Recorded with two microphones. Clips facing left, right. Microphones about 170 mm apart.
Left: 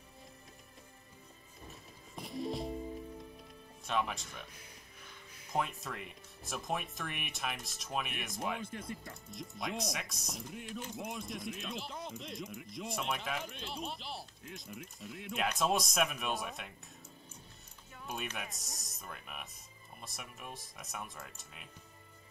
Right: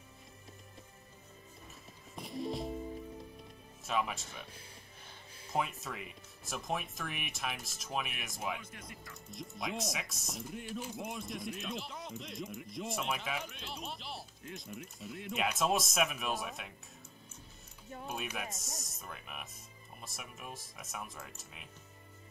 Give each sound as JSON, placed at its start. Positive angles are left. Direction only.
{"t": 1.7, "sound": "music", "side_deg": 0}
{"t": 3.8, "sound": "speech", "side_deg": 0}
{"t": 5.5, "sound": "speech", "side_deg": 0}
{"t": 8.6, "sound": "speech", "side_deg": 30}
{"t": 9.3, "sound": "speech", "side_deg": 0}
{"t": 18.0, "sound": "speech", "side_deg": -5}